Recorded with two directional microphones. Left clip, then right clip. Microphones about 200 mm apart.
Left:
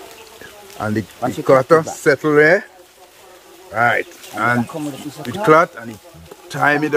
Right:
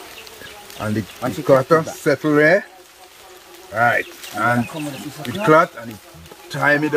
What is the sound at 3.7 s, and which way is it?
Speech, 20° left (ahead or behind).